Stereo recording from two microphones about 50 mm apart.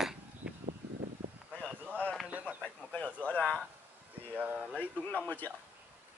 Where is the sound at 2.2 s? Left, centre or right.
Right.